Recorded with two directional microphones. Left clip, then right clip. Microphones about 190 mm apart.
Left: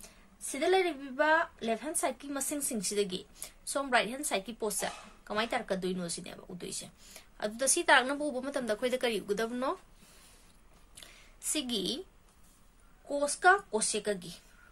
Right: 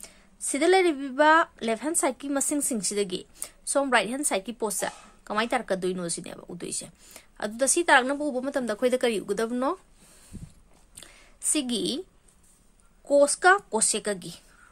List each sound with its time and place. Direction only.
0.0 s a woman's voice: 55° right (ahead or behind)
11.0 s a sound: 50° right (ahead or behind)
13.1 s speech: 55° right (ahead or behind)